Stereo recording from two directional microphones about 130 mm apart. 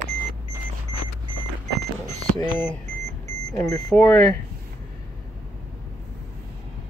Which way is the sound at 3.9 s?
10° left (ahead or behind).